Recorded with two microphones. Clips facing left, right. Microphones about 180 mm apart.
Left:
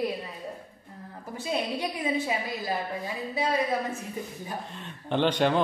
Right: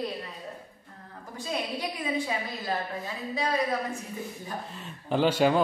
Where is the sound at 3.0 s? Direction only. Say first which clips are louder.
Left 2 dB; 15° left (ahead or behind).